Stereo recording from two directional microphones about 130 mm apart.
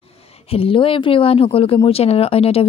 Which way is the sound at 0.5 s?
45° left (ahead or behind).